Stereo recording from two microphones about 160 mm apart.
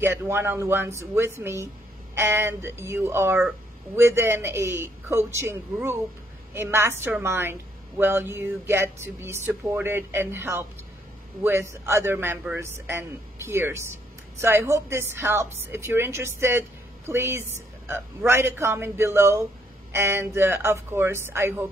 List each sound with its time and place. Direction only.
0.0 s speech: 15° right (ahead or behind)